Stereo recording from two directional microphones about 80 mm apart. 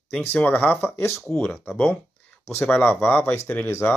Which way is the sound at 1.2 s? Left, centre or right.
Centre.